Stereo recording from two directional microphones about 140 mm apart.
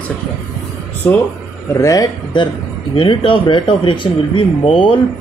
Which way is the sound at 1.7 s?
25° left (ahead or behind).